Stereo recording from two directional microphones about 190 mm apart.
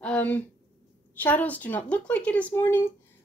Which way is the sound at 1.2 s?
10° left (ahead or behind).